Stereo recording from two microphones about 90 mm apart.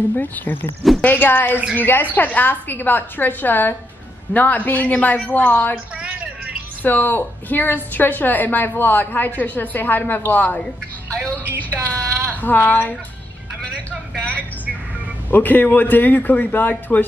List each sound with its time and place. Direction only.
0.2 s a woman's voice: 20° left (ahead or behind)
5.9 s a sound: 15° right (ahead or behind)
6.8 s a woman's voice: 20° left (ahead or behind)
14.1 s a woman's voice: 15° left (ahead or behind)